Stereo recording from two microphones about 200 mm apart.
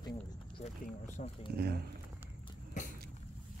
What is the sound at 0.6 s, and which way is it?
Speech, 35° left (ahead or behind).